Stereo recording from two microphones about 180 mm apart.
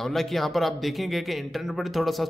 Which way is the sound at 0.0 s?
Centre (ahead or behind).